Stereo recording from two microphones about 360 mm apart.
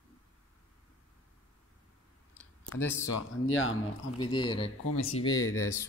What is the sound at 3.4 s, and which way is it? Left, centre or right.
Speech, left.